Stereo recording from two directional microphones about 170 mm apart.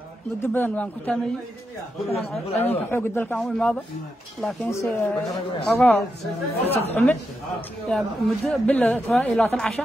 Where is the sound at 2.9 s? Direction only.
10° left (ahead or behind).